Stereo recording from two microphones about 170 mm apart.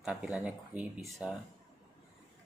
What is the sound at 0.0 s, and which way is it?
Speech, 5° right (ahead or behind).